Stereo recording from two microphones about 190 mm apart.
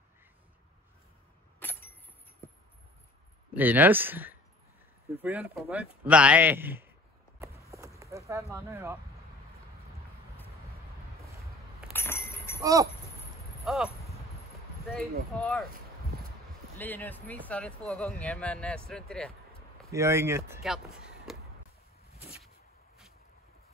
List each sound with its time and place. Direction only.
1.6 s a sound: 10° left (ahead or behind)
3.5 s speech: 10° right (ahead or behind)
8.3 s speech: 15° right (ahead or behind)
11.9 s a sound: 10° left (ahead or behind)
12.5 s speech: 15° right (ahead or behind)
13.7 s speech: 5° right (ahead or behind)
15.3 s speech: centre (ahead or behind)
16.7 s speech: 10° left (ahead or behind)
19.9 s speech: 15° right (ahead or behind)
20.6 s speech: centre (ahead or behind)